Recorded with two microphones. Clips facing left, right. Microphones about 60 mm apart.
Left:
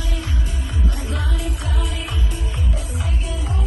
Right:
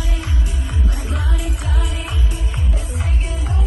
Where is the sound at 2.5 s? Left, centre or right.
Right.